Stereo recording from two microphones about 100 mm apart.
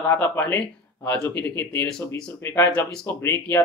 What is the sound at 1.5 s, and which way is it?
Speech, 20° left (ahead or behind).